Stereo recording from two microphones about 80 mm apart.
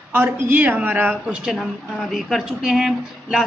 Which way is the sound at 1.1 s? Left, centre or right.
Centre.